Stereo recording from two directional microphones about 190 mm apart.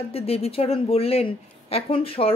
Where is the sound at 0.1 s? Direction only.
30° left (ahead or behind).